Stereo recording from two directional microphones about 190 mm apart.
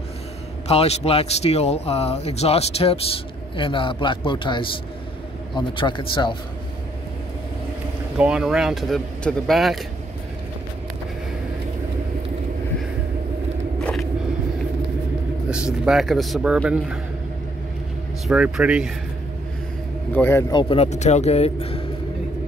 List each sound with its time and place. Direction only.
0.7 s a man's voice: 30° left (ahead or behind)
8.2 s speech: 5° right (ahead or behind)
13.7 s vehicle: 5° left (ahead or behind)
15.5 s speech: 5° right (ahead or behind)
18.2 s speech: 5° right (ahead or behind)
20.2 s speech: 10° left (ahead or behind); by 21.8 s 30° left (ahead or behind)